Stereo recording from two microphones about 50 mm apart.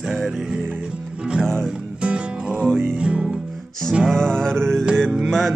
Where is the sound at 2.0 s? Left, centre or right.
Right.